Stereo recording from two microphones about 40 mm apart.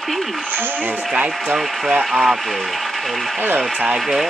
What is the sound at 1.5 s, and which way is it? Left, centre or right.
Speech, centre.